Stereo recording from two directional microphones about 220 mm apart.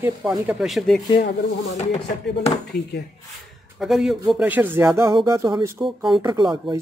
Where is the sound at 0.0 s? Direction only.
5° right (ahead or behind).